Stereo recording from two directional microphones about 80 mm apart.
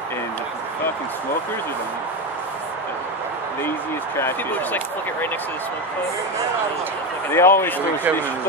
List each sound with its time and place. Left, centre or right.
4.2 s speech: left
7.2 s speech: left